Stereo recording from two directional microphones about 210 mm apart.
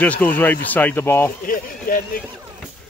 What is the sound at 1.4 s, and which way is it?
Speech, 40° left (ahead or behind).